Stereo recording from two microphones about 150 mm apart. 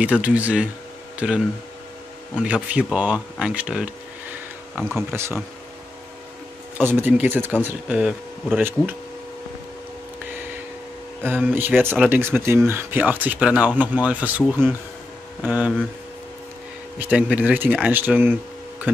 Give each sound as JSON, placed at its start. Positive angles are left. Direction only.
{"t": 0.0, "sound": "speech", "side_deg": -10}
{"t": 5.1, "sound": "speech", "side_deg": -15}
{"t": 6.8, "sound": "speech", "side_deg": -15}
{"t": 11.2, "sound": "speech", "side_deg": -15}
{"t": 17.0, "sound": "speech", "side_deg": -10}